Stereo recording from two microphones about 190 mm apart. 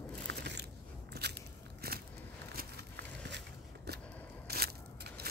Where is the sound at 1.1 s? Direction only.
60° right (ahead or behind).